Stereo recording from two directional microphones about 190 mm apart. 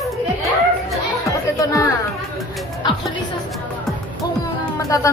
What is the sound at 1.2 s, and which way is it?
Chatter, 15° left (ahead or behind).